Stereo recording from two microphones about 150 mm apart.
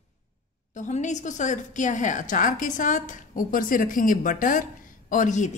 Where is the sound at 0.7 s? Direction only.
50° left (ahead or behind).